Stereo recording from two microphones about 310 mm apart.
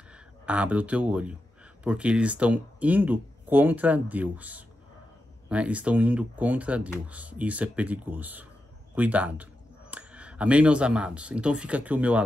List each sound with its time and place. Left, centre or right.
0.1 s speech: centre